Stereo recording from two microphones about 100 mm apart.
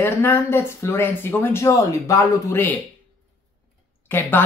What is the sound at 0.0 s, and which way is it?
Speech, 25° left (ahead or behind).